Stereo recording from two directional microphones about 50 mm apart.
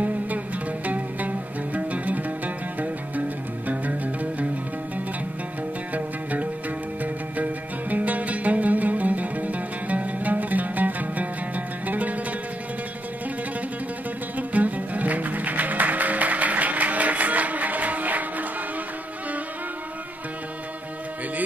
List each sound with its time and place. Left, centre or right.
0.8 s music: right
5.9 s music: right
7.9 s music: right
14.3 s music: right